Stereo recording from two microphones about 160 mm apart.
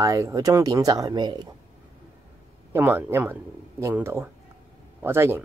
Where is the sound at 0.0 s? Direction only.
20° right (ahead or behind).